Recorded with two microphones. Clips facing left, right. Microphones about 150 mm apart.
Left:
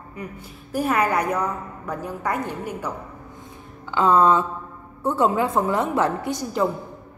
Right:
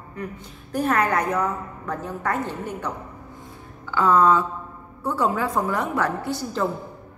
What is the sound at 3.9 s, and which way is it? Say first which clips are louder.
Music: left 1 dB; 20° left (ahead or behind).